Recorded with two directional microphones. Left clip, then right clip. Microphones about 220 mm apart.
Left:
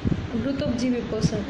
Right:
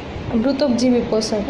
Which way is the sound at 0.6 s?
15° right (ahead or behind).